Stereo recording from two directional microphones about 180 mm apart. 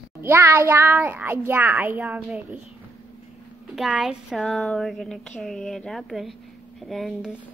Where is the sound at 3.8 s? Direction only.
Centre (ahead or behind).